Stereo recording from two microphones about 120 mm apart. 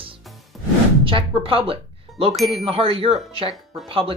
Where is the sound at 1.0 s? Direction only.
50° right (ahead or behind).